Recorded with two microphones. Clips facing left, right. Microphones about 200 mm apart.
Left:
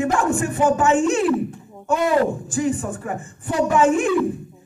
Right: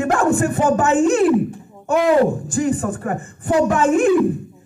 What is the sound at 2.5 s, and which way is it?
A man's voice, 55° right (ahead or behind).